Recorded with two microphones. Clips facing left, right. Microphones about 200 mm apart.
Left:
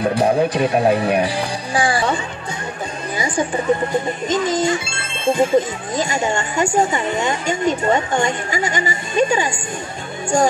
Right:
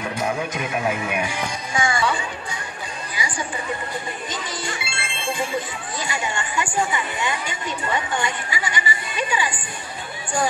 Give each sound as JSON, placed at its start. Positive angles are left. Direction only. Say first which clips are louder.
{"t": 0.0, "sound": "speech", "louder": "left 9 dB", "side_deg": 35}
{"t": 3.2, "sound": "speech", "louder": "left 9 dB", "side_deg": 45}